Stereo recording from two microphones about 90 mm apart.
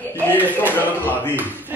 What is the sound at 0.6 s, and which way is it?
Speech, 20° left (ahead or behind).